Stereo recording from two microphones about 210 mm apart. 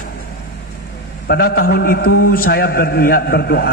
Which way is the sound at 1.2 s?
50° left (ahead or behind).